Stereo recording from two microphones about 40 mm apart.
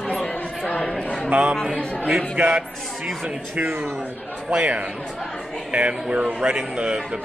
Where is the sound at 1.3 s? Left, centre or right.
Right.